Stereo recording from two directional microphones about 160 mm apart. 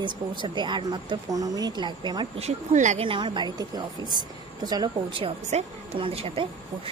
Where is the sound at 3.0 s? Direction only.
30° right (ahead or behind).